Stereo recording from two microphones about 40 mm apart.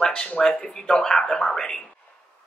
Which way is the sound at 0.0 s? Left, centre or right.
Left.